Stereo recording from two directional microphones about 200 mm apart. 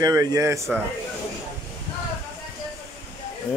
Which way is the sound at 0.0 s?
15° right (ahead or behind).